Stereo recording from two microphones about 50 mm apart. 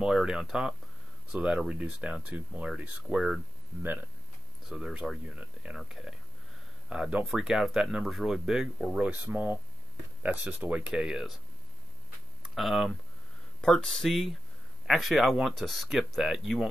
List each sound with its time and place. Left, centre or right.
0.0 s speech: centre
1.3 s speech: right
3.8 s speech: right
4.6 s speech: centre
6.9 s speech: centre
9.0 s speech: right
10.9 s speech: centre
12.4 s speech: centre
13.6 s speech: centre
14.0 s speech: centre